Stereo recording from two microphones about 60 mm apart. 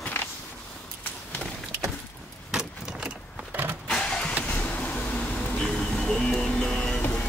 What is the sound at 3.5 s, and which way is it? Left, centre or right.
Power windows, right.